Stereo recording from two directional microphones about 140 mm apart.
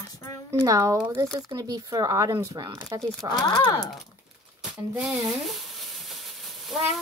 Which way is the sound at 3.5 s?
25° left (ahead or behind).